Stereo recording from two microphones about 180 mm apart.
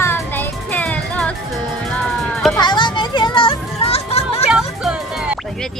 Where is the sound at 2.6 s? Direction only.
25° left (ahead or behind).